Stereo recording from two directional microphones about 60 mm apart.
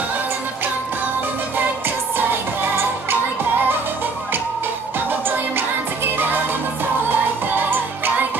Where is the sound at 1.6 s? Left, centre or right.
Right.